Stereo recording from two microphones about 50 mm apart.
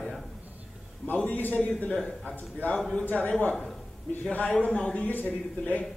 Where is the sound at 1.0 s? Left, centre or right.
Left.